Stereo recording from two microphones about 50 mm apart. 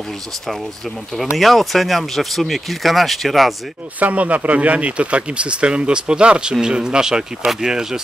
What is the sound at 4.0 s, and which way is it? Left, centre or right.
Speech, right.